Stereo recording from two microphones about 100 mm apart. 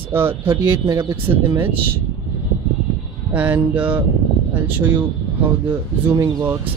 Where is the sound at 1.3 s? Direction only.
35° right (ahead or behind).